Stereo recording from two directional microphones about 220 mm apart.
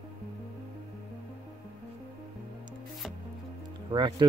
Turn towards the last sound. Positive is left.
turn(degrees=-20)  # may be behind; listen again after turning